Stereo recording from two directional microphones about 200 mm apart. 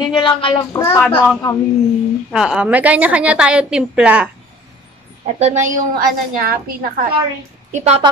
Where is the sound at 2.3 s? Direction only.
5° right (ahead or behind).